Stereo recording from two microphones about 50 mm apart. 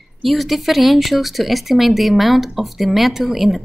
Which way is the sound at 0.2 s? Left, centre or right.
Centre.